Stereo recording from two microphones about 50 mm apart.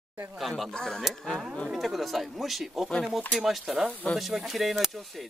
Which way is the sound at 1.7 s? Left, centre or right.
Centre.